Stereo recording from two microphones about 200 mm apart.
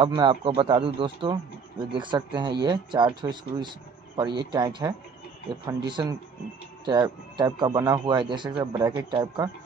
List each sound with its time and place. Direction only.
0.0 s speech: 25° right (ahead or behind)